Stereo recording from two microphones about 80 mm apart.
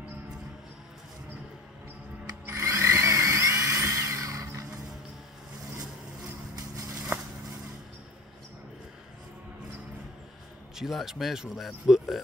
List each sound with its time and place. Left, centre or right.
2.4 s drill: right
6.2 s a sound: right
10.8 s speech: centre